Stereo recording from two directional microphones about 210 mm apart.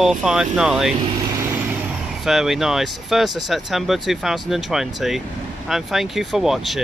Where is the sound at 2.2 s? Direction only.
Centre (ahead or behind).